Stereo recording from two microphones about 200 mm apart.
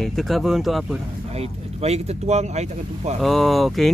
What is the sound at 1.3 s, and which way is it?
Speech, 30° right (ahead or behind).